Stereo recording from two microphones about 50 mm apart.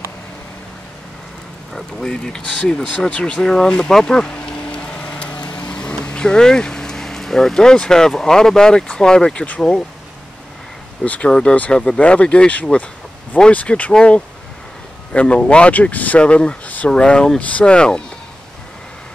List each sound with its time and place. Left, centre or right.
1.7 s speech: centre
3.1 s speech: left
11.1 s speech: left
16.9 s speech: centre
17.4 s speech: left